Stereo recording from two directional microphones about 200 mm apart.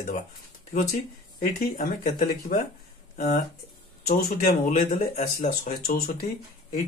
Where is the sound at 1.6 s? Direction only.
45° left (ahead or behind).